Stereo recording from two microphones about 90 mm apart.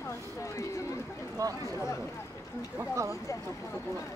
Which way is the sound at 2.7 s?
35° right (ahead or behind).